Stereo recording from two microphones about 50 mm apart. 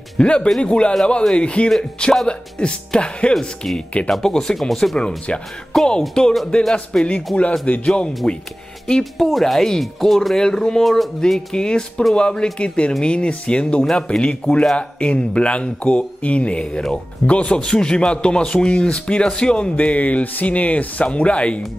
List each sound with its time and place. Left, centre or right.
0.2 s speech: left
4.1 s speech: centre
4.9 s speech: left
9.3 s speech: centre
10.8 s speech: centre
11.1 s speech: centre
16.6 s speech: centre
17.3 s speech: left